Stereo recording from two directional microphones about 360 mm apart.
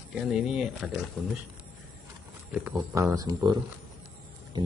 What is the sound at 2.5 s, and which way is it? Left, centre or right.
Speech, centre.